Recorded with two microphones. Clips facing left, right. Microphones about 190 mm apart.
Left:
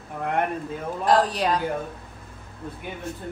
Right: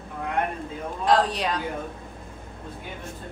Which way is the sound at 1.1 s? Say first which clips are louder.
Left 1 dB; centre (ahead or behind).